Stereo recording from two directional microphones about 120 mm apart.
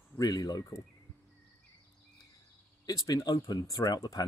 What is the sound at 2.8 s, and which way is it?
Speech, 30° left (ahead or behind).